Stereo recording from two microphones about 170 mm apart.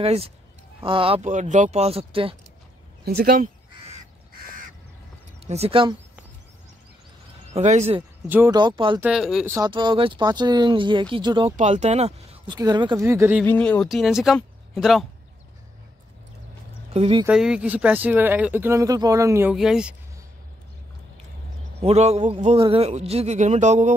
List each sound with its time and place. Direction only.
0.0 s a man's voice: 35° right (ahead or behind)
3.1 s speech: 60° right (ahead or behind)
5.5 s a man's voice: 35° right (ahead or behind)
7.4 s speech: 40° right (ahead or behind)
8.5 s speech: 25° right (ahead or behind)
9.0 s speech: 5° right (ahead or behind)
9.7 s speech: 30° right (ahead or behind)
11.5 s speech: 45° right (ahead or behind)
12.4 s speech: 25° right (ahead or behind)
13.5 s speech: 10° left (ahead or behind)
16.9 s speech: 35° right (ahead or behind)
17.3 s speech: 5° right (ahead or behind)
19.5 s speech: 5° right (ahead or behind)
21.7 s a man's voice: 40° right (ahead or behind)